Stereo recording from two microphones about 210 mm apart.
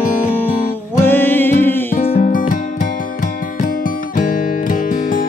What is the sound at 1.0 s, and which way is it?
Music, 10° left (ahead or behind).